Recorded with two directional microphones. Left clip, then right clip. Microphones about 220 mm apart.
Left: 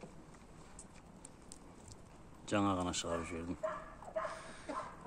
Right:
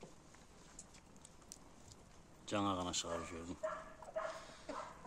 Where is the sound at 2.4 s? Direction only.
5° left (ahead or behind).